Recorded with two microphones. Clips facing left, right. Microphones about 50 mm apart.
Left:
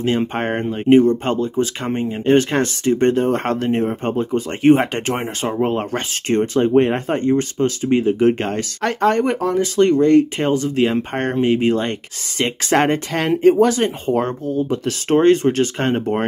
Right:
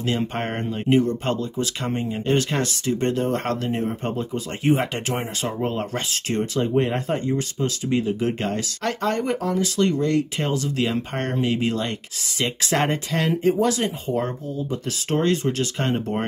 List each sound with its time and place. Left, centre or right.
0.0 s speech: left
5.1 s speech: left